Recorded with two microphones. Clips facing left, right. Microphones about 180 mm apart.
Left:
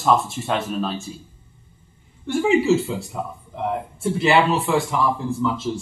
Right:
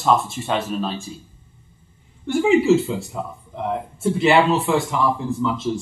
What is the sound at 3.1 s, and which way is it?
A man's voice, centre (ahead or behind).